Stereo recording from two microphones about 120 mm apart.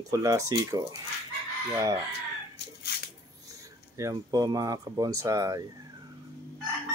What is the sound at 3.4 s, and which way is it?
Speech, 25° right (ahead or behind).